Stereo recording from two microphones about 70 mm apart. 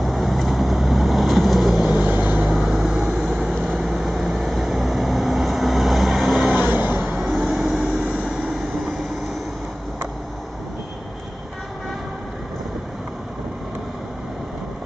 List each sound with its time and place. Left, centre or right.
0.0 s vehicle: centre
1.9 s vehicle: centre
2.4 s vehicle: centre
6.4 s vehicle: centre
7.1 s vehicle: centre